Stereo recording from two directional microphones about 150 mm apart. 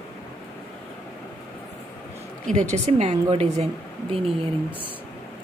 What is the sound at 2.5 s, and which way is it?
A woman's voice, 55° right (ahead or behind).